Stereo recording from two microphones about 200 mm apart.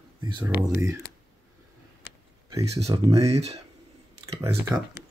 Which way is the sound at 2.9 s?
15° right (ahead or behind).